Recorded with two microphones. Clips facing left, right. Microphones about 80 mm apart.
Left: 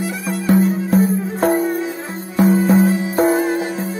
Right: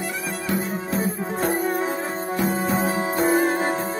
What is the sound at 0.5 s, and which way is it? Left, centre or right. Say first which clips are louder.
Music: left 11 dB; left.